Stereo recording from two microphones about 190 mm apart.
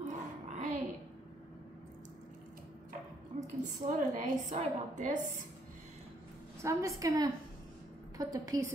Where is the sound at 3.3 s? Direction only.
35° right (ahead or behind).